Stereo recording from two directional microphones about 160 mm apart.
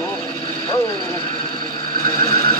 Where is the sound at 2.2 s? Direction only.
20° left (ahead or behind).